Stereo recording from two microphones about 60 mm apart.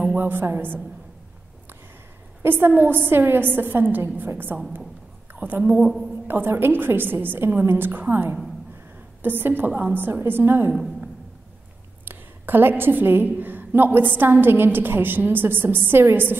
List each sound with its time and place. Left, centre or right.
0.1 s a woman's voice: right
2.4 s a woman's voice: right
5.3 s a sound: right
5.6 s a woman's voice: centre
6.2 s a woman's voice: right
12.0 s a woman's voice: right